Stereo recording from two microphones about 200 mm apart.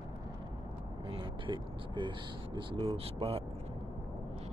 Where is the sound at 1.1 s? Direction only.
25° right (ahead or behind).